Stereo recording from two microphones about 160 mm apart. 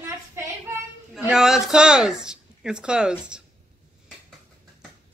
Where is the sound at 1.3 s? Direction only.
Centre (ahead or behind).